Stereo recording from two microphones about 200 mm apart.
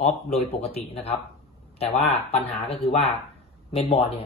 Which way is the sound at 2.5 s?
30° left (ahead or behind).